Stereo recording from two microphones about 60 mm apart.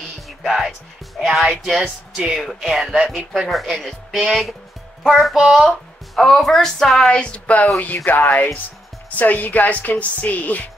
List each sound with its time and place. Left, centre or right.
0.4 s a woman's voice: centre; by 10.6 s left